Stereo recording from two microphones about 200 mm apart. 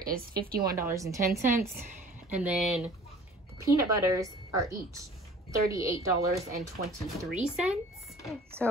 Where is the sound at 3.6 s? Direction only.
15° right (ahead or behind).